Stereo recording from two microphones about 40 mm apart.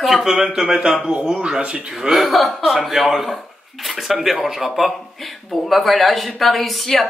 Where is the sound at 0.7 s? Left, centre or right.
Right.